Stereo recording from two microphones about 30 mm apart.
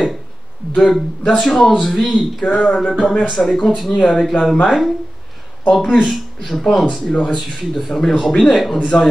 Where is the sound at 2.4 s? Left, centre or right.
Left.